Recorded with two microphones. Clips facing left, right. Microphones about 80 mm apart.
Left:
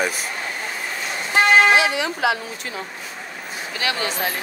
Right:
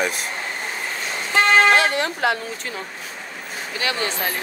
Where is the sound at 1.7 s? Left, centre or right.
Right.